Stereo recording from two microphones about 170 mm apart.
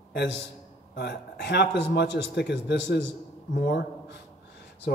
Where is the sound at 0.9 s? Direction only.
80° left.